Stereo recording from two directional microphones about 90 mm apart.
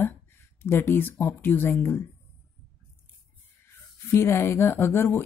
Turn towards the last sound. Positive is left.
turn(degrees=25)  # may be behind; listen again after turning